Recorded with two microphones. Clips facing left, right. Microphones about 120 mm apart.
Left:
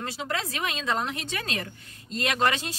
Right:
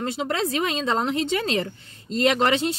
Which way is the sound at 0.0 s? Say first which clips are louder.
Right 6 dB; 30° right (ahead or behind).